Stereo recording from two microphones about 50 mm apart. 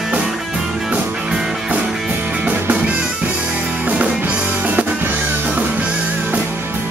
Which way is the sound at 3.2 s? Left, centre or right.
Right.